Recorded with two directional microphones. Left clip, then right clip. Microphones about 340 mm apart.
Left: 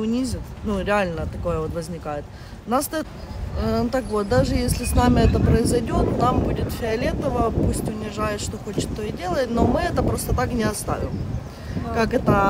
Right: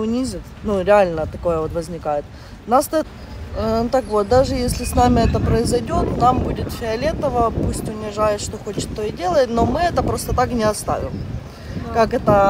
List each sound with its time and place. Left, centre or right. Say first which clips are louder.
0.0 s speech: right 3 dB; centre
11.9 s speech: right 5 dB; centre